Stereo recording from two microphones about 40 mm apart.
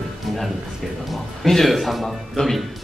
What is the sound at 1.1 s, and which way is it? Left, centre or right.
Speech, centre.